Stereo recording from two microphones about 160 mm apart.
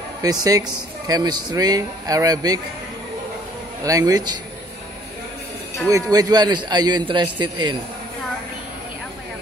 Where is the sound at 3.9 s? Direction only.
20° right (ahead or behind).